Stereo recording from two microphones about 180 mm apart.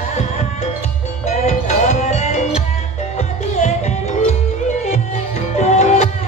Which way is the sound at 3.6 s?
40° left (ahead or behind).